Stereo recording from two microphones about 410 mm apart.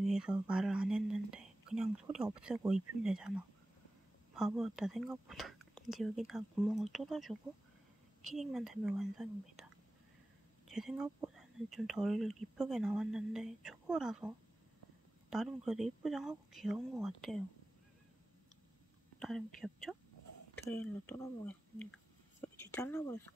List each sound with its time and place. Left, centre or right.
0.0 s speech: centre
10.7 s speech: centre
19.1 s speech: centre